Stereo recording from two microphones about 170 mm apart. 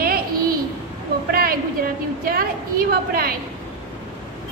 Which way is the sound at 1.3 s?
60° right (ahead or behind).